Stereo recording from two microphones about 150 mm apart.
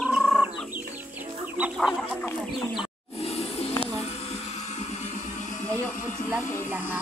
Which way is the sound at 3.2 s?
40° left (ahead or behind).